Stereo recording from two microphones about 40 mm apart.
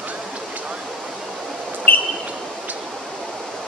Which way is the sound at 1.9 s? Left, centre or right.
Left.